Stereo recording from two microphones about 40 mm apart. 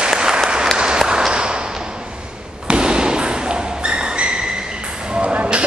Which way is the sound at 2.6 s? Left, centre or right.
Right.